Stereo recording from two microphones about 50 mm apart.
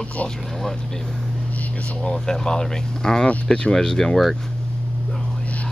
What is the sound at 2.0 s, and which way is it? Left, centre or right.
Speech, centre.